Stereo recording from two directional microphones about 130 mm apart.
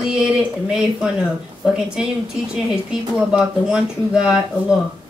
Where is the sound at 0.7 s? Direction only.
5° right (ahead or behind).